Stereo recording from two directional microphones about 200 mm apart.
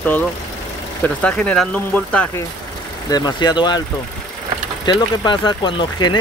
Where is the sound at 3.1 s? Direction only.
20° left (ahead or behind).